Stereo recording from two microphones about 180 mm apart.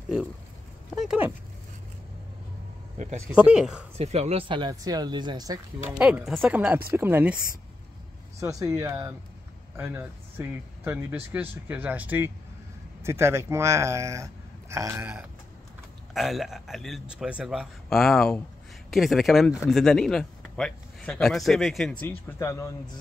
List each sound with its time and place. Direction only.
0.9 s a sound: 5° right (ahead or behind)
3.3 s speech: 5° right (ahead or behind)
4.0 s speech: 35° right (ahead or behind)
5.9 s speech: 10° right (ahead or behind)
8.4 s speech: 15° right (ahead or behind)
16.1 s speech: centre (ahead or behind); by 22.8 s 15° left (ahead or behind)